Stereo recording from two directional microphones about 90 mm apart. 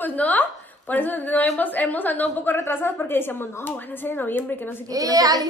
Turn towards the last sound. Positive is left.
turn(degrees=-45)  # may be behind; listen again after turning